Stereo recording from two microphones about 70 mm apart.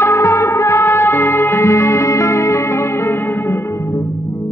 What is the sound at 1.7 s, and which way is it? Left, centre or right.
Music, left.